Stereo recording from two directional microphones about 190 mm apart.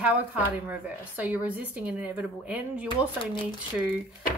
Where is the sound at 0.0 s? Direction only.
5° right (ahead or behind).